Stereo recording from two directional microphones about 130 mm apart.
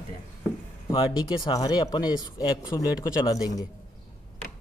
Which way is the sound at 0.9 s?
40° left (ahead or behind).